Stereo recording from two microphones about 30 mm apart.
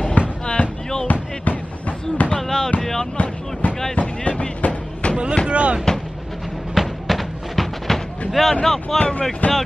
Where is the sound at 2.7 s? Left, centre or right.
Left.